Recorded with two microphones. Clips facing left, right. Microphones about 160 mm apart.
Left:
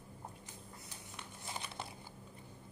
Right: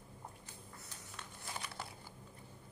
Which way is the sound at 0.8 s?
15° left (ahead or behind).